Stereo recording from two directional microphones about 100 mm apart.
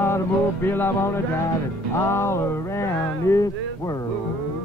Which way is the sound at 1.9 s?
25° left (ahead or behind).